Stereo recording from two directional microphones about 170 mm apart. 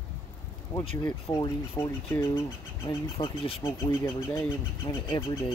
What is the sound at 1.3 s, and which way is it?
Speech, 20° left (ahead or behind).